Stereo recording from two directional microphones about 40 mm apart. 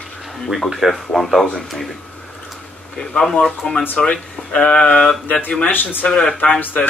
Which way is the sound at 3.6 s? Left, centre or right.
Left.